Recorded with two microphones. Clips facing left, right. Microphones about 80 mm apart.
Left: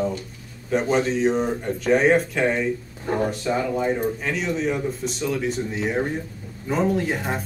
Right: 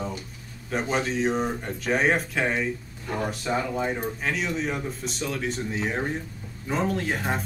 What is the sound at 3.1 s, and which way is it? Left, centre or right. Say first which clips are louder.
Speech: left 6 dB; left.